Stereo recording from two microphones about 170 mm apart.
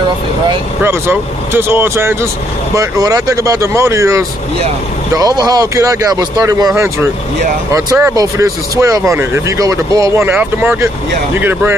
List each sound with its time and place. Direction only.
0.8 s speech: 15° right (ahead or behind)